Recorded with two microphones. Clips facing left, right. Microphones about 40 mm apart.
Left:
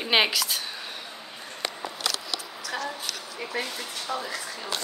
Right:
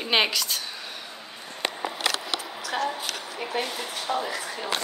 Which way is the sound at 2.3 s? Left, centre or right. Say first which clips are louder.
Right 3 dB; right.